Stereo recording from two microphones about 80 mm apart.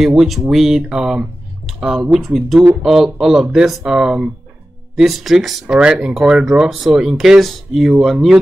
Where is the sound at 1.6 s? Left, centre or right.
Centre.